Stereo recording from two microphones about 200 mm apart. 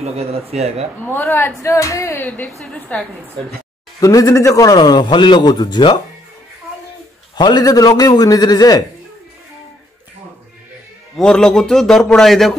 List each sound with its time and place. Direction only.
0.0 s speech: 30° right (ahead or behind)
1.0 s a man's voice: 10° left (ahead or behind)
4.0 s a man's voice: 15° left (ahead or behind)
7.3 s a man's voice: 20° left (ahead or behind)
11.1 s a man's voice: 5° left (ahead or behind)